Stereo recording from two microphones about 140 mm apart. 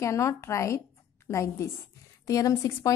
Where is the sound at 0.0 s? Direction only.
20° left (ahead or behind).